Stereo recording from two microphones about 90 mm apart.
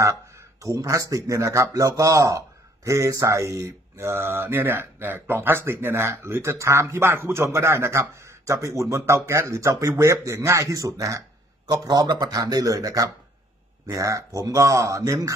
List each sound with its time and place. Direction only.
0.0 s speech: 35° right (ahead or behind)